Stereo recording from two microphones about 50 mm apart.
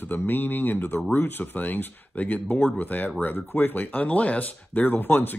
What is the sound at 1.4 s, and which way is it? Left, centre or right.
Speech, left.